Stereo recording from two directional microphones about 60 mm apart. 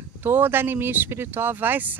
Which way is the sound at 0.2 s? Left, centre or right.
Right.